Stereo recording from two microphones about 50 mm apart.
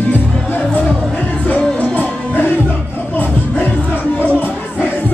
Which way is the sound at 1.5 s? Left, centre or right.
Left.